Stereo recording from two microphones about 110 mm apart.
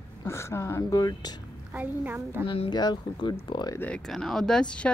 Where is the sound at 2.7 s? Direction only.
40° left (ahead or behind).